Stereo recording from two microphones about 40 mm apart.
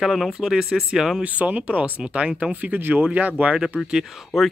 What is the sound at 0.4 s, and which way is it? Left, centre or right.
Speech, centre.